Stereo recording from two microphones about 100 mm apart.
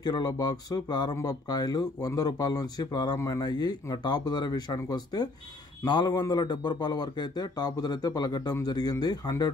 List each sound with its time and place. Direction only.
0.0 s speech: 45° left (ahead or behind)